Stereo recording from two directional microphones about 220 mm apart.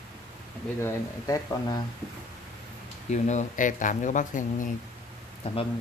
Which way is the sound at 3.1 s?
30° left (ahead or behind).